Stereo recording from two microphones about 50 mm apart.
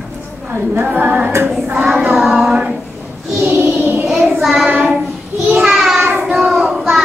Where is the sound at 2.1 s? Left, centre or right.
Centre.